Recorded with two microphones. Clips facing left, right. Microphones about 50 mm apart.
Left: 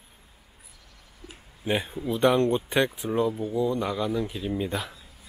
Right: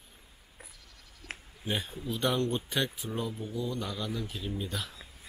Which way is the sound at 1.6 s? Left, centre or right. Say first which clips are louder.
Left 7 dB; left.